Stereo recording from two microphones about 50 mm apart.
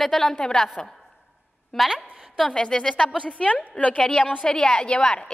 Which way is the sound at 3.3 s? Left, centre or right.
Left.